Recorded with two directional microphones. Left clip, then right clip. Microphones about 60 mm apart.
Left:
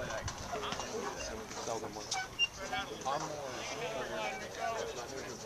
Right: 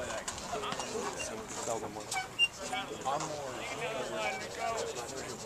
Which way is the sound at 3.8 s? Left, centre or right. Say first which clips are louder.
Right 3 dB; centre.